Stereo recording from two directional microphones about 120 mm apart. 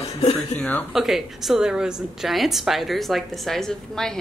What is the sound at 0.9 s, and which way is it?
A woman's voice, centre (ahead or behind).